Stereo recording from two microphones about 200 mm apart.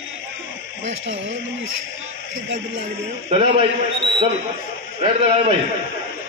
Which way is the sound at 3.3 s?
25° right (ahead or behind).